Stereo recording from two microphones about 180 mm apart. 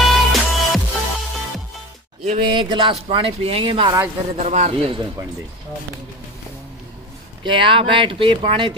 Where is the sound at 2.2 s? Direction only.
30° right (ahead or behind).